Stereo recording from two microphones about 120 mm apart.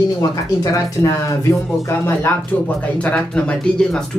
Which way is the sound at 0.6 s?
30° left (ahead or behind).